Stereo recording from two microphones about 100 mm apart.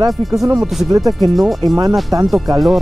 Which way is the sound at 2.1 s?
35° right (ahead or behind).